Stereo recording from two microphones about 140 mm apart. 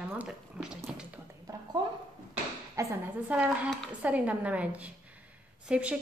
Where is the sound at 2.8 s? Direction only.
25° right (ahead or behind).